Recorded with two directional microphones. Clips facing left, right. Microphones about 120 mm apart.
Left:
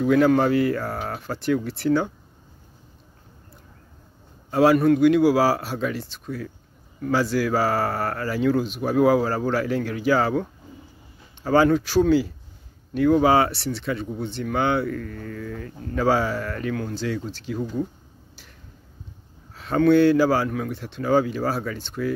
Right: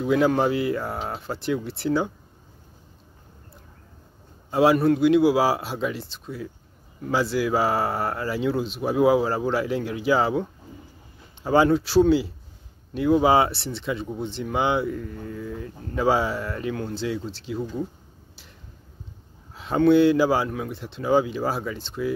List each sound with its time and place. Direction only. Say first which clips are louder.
0.0 s speech: left 3 dB; 25° right (ahead or behind)
4.5 s speech: left 2 dB; 20° right (ahead or behind)
11.4 s speech: left 1 dB; 20° right (ahead or behind)
19.5 s speech: even; 20° right (ahead or behind)